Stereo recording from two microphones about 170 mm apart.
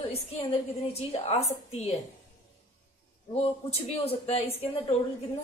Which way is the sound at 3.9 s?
35° left (ahead or behind).